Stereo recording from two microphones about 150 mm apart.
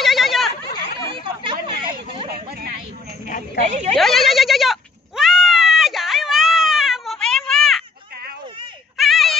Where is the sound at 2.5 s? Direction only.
90° right.